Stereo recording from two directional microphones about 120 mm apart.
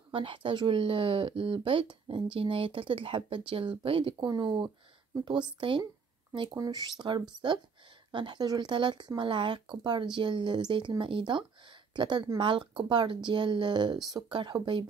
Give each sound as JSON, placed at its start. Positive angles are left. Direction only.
{"t": 0.1, "sound": "speech", "side_deg": -45}